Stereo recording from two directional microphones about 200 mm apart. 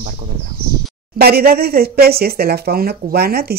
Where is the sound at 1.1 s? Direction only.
50° right (ahead or behind).